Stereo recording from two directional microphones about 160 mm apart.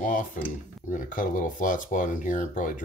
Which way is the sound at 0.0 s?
55° left (ahead or behind).